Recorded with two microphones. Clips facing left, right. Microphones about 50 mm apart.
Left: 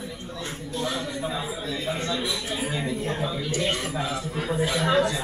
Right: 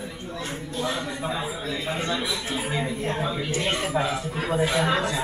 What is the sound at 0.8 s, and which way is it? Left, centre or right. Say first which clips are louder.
Speech: right 1 dB; centre.